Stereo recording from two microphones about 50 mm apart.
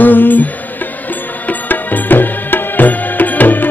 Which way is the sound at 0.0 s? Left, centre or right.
Left.